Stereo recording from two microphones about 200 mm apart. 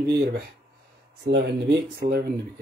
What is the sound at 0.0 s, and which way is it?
Speech, 55° right (ahead or behind).